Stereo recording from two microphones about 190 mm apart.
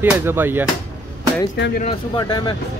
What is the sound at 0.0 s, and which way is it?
Speech, 10° right (ahead or behind).